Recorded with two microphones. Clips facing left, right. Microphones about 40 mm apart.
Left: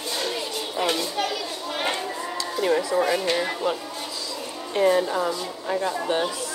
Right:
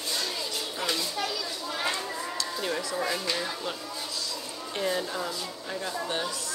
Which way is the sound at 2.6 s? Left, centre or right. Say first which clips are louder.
Left 11 dB; left.